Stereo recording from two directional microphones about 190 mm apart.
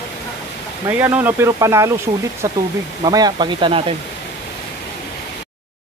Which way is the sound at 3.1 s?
20° right (ahead or behind).